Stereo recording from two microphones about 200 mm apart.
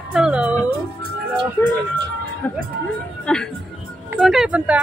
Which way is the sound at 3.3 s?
5° left (ahead or behind).